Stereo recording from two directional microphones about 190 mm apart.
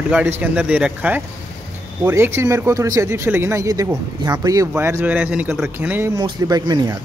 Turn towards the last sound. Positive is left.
turn(degrees=-20)  # may be behind; listen again after turning